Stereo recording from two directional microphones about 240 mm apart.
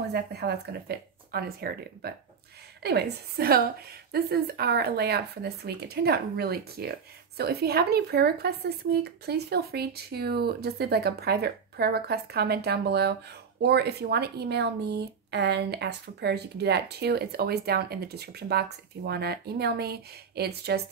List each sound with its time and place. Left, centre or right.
0.1 s a woman's voice: right